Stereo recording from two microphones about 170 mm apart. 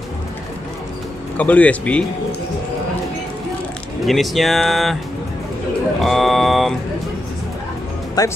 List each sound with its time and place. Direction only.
1.3 s speech: 10° left (ahead or behind)
4.0 s speech: centre (ahead or behind)
5.9 s vehicle: centre (ahead or behind)
8.2 s speech: 20° left (ahead or behind)